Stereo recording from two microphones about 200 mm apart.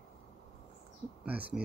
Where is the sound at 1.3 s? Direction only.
5° right (ahead or behind).